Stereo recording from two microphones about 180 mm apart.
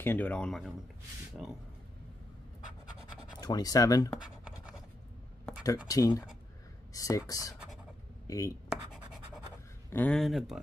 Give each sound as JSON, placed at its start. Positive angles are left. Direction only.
{"t": 0.0, "sound": "speech", "side_deg": 10}
{"t": 3.3, "sound": "speech", "side_deg": 20}
{"t": 5.9, "sound": "speech", "side_deg": 20}
{"t": 7.5, "sound": "a sound", "side_deg": -5}
{"t": 8.3, "sound": "speech", "side_deg": 20}
{"t": 8.6, "sound": "scratch", "side_deg": 0}
{"t": 9.8, "sound": "speech", "side_deg": 10}